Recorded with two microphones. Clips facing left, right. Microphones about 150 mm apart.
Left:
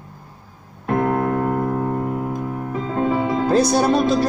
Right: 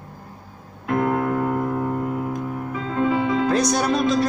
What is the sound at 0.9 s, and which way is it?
Piano, 35° left (ahead or behind).